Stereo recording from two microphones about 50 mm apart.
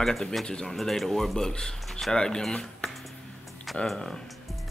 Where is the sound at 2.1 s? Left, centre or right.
Centre.